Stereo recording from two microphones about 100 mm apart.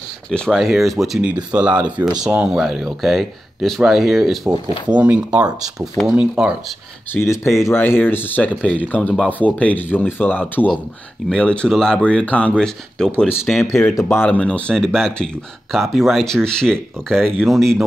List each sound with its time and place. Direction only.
0.3 s speech: 10° left (ahead or behind)
0.6 s speech: centre (ahead or behind)
7.2 s speech: 30° left (ahead or behind); by 13.7 s 5° left (ahead or behind)
14.1 s speech: 15° left (ahead or behind); by 17.8 s centre (ahead or behind)